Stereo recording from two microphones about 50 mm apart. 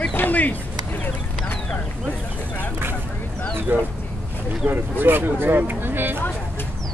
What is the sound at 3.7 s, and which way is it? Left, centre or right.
Speech, right.